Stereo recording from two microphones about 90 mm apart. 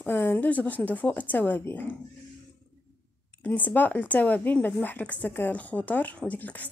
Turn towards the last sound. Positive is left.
turn(degrees=20)  # may be behind; listen again after turning